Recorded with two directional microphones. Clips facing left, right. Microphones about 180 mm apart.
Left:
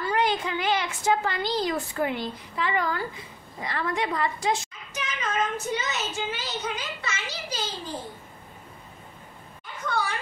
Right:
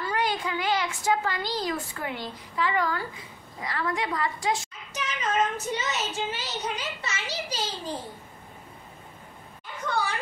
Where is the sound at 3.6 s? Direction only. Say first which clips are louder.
Left 1 dB; 25° left (ahead or behind).